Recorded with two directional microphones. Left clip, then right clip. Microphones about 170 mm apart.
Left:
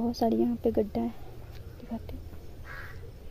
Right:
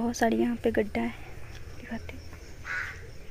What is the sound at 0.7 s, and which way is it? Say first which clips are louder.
Speech: right 2 dB; 20° left (ahead or behind).